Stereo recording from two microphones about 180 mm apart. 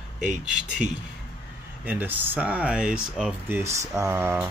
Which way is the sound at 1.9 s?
10° right (ahead or behind).